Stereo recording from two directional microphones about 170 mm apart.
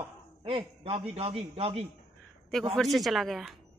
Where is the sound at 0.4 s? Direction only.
30° right (ahead or behind).